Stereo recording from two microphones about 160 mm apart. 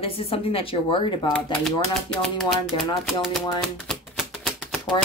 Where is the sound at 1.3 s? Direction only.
5° left (ahead or behind).